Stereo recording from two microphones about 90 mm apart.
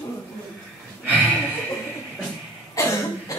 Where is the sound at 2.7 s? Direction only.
35° left (ahead or behind).